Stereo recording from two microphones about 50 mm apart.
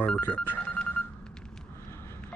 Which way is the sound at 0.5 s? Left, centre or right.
Centre.